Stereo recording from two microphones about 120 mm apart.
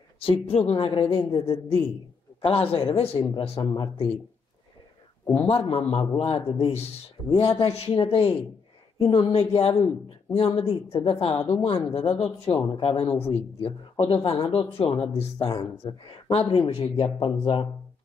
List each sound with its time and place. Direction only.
0.2 s a man's voice: 55° left (ahead or behind)
3.2 s a man's voice: 35° left (ahead or behind)
5.5 s a man's voice: 50° left (ahead or behind)
12.5 s a man's voice: 40° left (ahead or behind)